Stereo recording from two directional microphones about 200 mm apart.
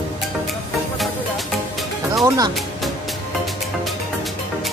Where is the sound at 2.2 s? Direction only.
15° right (ahead or behind).